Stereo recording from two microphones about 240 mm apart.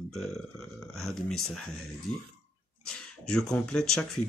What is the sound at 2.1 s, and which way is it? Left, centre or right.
Speech, left.